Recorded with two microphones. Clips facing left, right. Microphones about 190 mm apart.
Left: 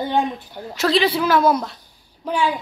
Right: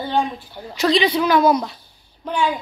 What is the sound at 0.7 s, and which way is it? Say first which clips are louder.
A woman's voice: right 1 dB; 5° left (ahead or behind).